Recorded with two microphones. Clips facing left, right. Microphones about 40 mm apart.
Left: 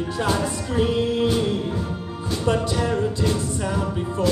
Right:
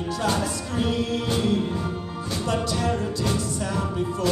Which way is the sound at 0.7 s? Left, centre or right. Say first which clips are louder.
Left 4 dB; centre.